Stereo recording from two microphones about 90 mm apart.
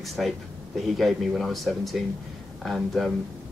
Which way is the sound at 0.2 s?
Centre (ahead or behind).